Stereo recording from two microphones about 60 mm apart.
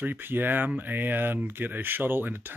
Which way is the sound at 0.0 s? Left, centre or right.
Right.